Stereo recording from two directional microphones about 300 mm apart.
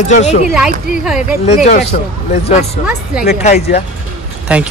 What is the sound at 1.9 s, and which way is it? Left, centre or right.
Speech, left.